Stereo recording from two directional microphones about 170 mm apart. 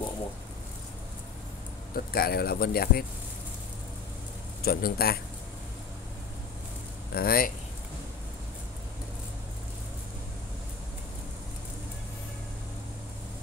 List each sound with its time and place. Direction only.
2.0 s speech: 65° left (ahead or behind)
4.6 s speech: 60° left (ahead or behind)
7.2 s speech: 60° left (ahead or behind)